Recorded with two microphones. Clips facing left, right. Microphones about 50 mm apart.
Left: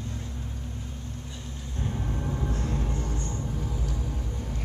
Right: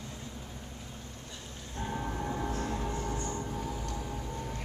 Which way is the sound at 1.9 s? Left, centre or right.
Centre.